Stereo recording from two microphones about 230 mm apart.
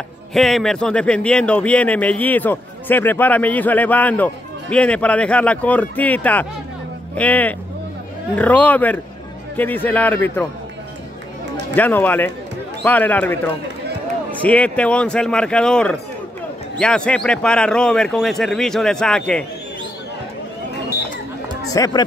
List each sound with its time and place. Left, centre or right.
0.3 s speech: centre
11.7 s a man's voice: centre
21.7 s speech: centre